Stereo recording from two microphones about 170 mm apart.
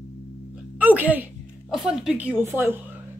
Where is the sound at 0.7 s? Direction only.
10° right (ahead or behind).